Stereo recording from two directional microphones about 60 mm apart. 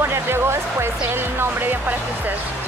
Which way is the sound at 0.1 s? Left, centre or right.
Right.